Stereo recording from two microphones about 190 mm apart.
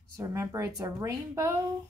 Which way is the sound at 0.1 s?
15° right (ahead or behind).